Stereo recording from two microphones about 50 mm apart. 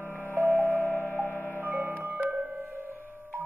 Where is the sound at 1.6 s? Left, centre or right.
Right.